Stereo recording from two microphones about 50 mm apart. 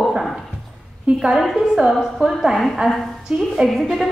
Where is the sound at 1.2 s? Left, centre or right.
Centre.